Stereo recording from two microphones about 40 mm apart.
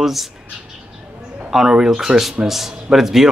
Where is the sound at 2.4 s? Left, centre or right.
Centre.